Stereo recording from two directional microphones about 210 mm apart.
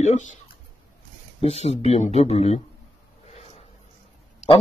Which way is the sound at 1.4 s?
30° left (ahead or behind).